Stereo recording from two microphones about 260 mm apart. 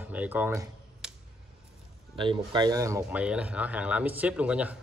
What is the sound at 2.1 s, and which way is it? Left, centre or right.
Speech, centre.